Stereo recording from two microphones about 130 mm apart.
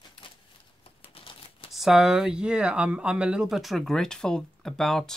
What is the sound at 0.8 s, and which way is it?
Typing, 45° left (ahead or behind).